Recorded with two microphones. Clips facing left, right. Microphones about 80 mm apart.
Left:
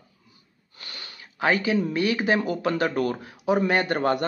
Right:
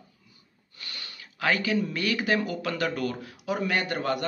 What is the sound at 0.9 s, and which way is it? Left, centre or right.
Speech, left.